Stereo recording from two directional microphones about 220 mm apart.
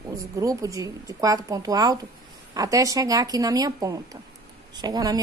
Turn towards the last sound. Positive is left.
turn(degrees=-15)  # may be behind; listen again after turning